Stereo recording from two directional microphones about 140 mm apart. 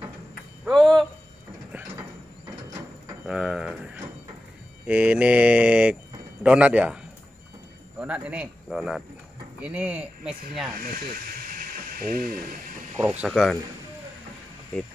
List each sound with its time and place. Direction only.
0.7 s a sound: centre (ahead or behind)
3.3 s speech: 5° right (ahead or behind)
4.8 s mantra: 10° right (ahead or behind)
12.0 s speech: 75° right (ahead or behind)
13.0 s mantra: 10° right (ahead or behind)
13.3 s speech: 5° left (ahead or behind)